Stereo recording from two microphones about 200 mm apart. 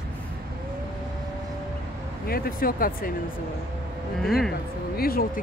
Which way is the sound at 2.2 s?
50° left (ahead or behind).